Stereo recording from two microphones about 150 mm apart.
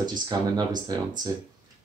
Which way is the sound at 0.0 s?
30° right (ahead or behind).